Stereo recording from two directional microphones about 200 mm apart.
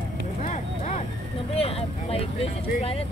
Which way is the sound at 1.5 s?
30° left (ahead or behind).